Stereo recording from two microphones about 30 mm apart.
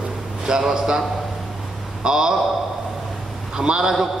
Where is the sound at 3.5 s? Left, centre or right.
Right.